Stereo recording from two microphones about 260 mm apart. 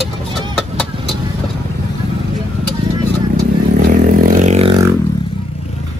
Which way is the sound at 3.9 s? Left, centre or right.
Right.